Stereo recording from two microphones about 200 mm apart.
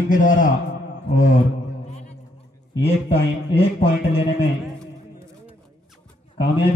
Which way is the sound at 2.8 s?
30° left (ahead or behind).